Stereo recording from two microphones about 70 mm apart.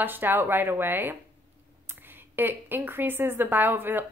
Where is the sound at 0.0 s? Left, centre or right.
Right.